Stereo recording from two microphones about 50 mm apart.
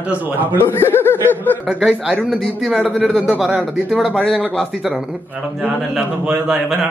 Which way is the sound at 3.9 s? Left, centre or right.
Centre.